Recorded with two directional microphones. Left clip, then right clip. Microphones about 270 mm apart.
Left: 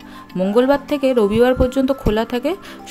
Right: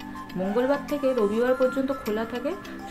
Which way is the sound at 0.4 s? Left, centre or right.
Left.